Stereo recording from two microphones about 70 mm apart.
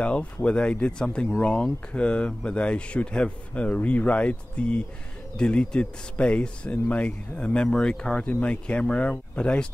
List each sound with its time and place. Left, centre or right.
0.0 s speech: centre